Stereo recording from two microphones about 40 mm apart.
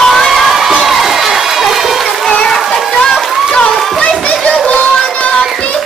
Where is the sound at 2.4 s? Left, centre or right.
Centre.